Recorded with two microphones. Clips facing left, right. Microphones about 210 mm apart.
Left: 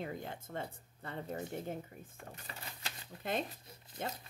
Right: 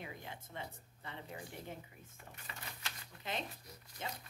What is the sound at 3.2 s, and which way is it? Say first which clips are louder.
Speech: left 6 dB; 50° left (ahead or behind).